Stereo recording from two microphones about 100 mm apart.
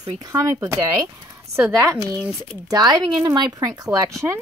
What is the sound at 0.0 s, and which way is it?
Speech, 40° right (ahead or behind).